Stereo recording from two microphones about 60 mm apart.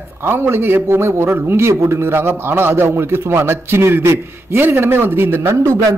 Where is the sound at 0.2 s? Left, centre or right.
Right.